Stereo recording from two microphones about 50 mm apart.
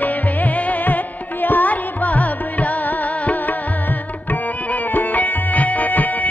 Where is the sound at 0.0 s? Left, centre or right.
Left.